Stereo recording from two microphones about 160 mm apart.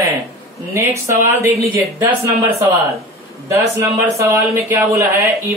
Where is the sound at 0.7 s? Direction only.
15° right (ahead or behind).